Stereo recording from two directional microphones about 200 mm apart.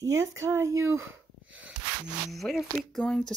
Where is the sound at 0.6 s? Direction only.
80° right.